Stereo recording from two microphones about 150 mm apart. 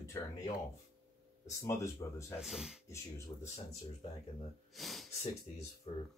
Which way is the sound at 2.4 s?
5° right (ahead or behind).